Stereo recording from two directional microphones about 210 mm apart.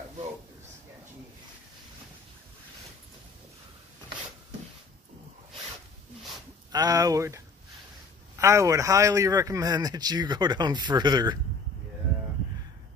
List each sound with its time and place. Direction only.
6.7 s a man's voice: 15° right (ahead or behind)